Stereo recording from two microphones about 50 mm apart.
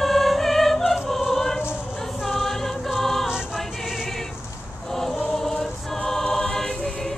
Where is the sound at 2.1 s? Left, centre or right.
Centre.